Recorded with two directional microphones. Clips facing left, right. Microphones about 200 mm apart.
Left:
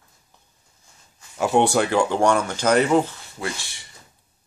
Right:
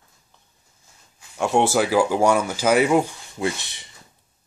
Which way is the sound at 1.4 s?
Centre (ahead or behind).